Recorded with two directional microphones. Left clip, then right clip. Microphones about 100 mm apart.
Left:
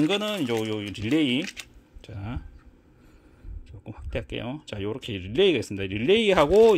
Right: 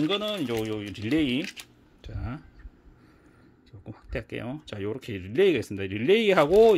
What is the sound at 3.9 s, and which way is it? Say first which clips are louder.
Speech: left 2 dB; 25° left (ahead or behind).